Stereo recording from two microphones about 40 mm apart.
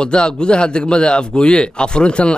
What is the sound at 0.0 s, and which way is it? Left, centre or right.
A man's voice, left.